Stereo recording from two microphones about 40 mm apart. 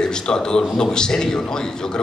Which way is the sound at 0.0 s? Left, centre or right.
Centre.